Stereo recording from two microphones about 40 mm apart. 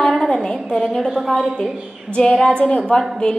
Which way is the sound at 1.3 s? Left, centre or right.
Centre.